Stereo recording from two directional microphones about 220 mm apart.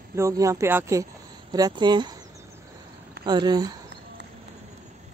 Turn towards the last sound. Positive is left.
turn(degrees=-20)  # may be behind; listen again after turning